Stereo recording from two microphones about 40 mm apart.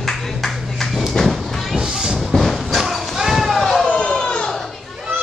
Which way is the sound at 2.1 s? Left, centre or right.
Centre.